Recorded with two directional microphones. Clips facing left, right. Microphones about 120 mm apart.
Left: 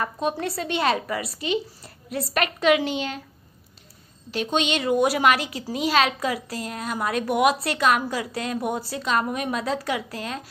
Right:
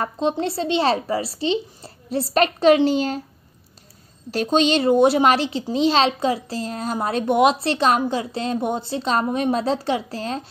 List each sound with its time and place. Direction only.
0.0 s speech: 25° right (ahead or behind)
4.3 s speech: 35° right (ahead or behind)